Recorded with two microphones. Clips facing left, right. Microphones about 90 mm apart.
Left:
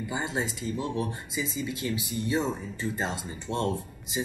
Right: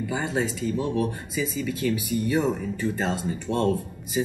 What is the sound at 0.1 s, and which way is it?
Speech, 20° left (ahead or behind).